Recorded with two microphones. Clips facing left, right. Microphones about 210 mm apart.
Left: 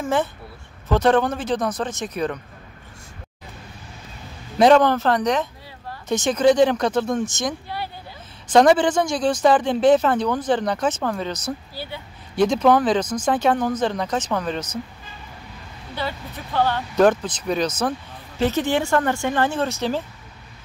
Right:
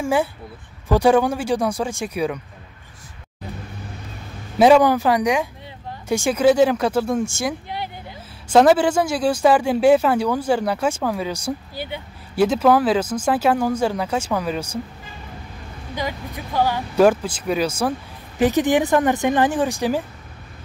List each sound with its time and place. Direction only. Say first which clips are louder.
0.0 s speech: right 2 dB; 10° right (ahead or behind)
4.6 s speech: right 1 dB; 10° right (ahead or behind)
12.4 s speech: right 1 dB; 5° right (ahead or behind)
15.9 s speech: right 2 dB; 15° right (ahead or behind)